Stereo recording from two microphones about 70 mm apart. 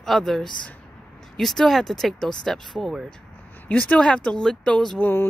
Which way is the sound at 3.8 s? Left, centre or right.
Centre.